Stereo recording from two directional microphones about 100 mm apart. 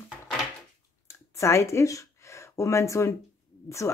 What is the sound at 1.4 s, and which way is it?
Speech, 30° left (ahead or behind).